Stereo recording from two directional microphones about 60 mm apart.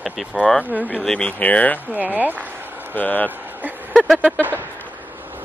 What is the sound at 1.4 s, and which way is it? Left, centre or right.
Speech, left.